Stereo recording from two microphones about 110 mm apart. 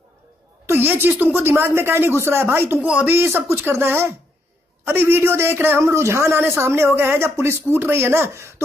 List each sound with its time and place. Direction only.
0.7 s a man's voice: 20° right (ahead or behind)
3.2 s a man's voice: 20° right (ahead or behind)